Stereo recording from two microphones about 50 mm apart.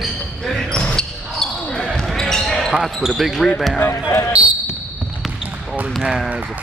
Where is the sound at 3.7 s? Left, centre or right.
Left.